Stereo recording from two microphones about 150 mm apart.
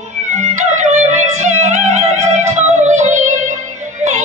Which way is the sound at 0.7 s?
50° right (ahead or behind).